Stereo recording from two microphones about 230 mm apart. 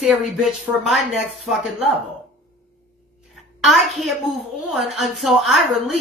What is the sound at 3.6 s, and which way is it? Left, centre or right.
A woman's voice, centre.